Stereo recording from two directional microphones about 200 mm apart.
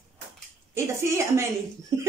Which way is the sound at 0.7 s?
15° right (ahead or behind).